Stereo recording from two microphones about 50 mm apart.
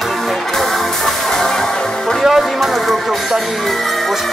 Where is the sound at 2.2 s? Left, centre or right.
Centre.